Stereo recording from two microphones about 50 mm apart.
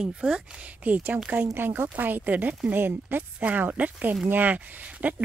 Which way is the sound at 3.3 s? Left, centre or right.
Right.